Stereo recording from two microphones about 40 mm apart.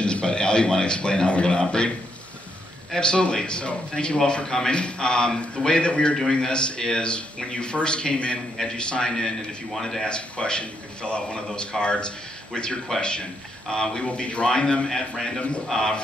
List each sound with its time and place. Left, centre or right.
0.0 s a man's voice: left
2.9 s a man's voice: left
10.0 s a man's voice: left
14.0 s speech: left
14.9 s a man's voice: centre